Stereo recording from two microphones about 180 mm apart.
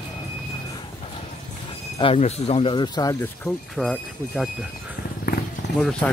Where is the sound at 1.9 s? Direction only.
35° left (ahead or behind).